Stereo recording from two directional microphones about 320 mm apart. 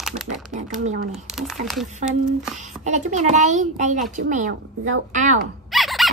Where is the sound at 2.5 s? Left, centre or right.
Right.